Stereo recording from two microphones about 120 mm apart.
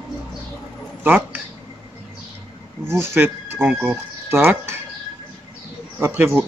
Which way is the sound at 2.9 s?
20° right (ahead or behind).